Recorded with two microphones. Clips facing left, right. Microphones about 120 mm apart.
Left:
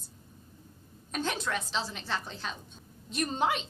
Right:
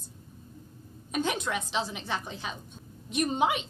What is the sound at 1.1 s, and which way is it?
A woman's voice, 10° right (ahead or behind).